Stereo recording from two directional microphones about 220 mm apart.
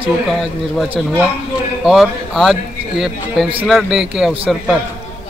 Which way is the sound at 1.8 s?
Centre (ahead or behind).